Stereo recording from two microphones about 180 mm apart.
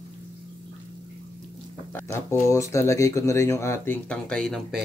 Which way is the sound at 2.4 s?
15° left (ahead or behind).